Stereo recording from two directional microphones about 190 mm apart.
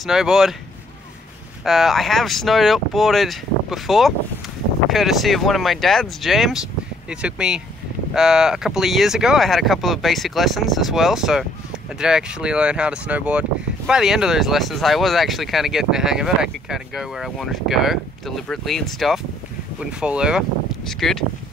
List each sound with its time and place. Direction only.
0.0 s speech: centre (ahead or behind)
1.6 s speech: centre (ahead or behind)